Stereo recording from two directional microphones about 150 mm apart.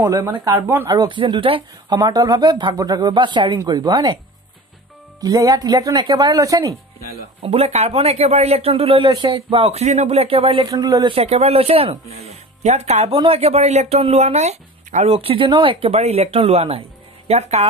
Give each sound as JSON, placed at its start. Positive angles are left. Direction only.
{"t": 0.0, "sound": "speech", "side_deg": -15}
{"t": 0.9, "sound": "speech", "side_deg": -35}
{"t": 5.2, "sound": "speech", "side_deg": -25}
{"t": 7.4, "sound": "speech", "side_deg": -45}
{"t": 10.7, "sound": "speech", "side_deg": -25}
{"t": 11.1, "sound": "speech", "side_deg": -45}